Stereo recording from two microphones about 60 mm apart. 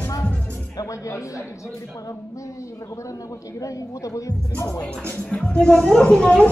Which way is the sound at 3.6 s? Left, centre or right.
Left.